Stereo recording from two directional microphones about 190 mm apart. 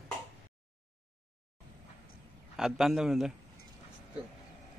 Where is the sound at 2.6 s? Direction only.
Centre (ahead or behind).